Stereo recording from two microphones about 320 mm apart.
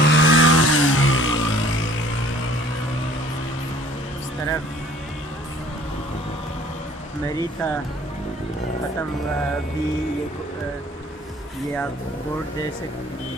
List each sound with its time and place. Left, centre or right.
0.0 s vehicle: left
7.3 s speech: centre